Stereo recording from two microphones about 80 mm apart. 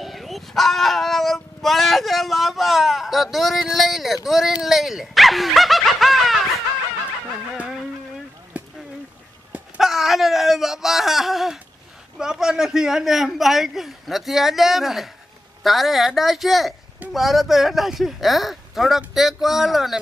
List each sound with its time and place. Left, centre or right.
0.0 s speech: centre
8.5 s a sound: centre
9.8 s a man's voice: centre